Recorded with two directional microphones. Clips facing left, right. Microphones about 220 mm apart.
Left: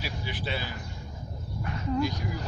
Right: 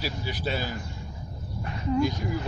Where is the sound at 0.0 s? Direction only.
40° right (ahead or behind).